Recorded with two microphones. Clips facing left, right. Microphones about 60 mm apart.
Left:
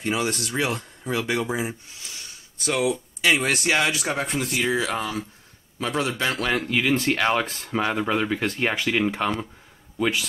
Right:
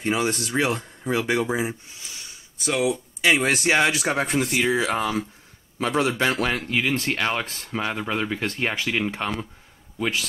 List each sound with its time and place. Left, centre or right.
0.0 s a man's voice: centre
6.3 s speech: centre